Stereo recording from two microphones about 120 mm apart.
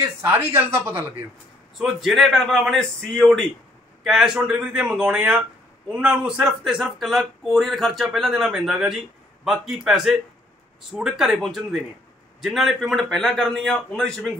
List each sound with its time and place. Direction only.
0.0 s speech: 20° right (ahead or behind)
1.8 s speech: centre (ahead or behind)